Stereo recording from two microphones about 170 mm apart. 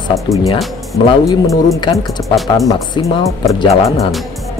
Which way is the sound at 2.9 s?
30° left (ahead or behind).